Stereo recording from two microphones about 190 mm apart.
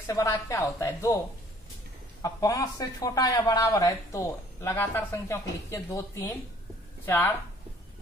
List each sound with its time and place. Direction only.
0.0 s speech: 15° left (ahead or behind)
2.2 s speech: 20° left (ahead or behind)